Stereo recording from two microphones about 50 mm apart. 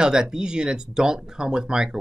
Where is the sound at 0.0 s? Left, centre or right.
Centre.